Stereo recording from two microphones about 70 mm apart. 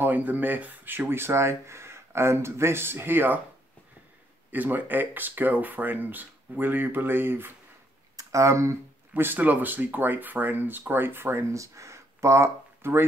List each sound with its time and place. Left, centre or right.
0.0 s speech: right
4.5 s speech: right
8.2 s speech: right
9.1 s speech: right
11.5 s speech: right